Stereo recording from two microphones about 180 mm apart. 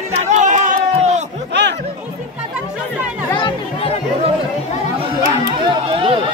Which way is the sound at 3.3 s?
30° left (ahead or behind).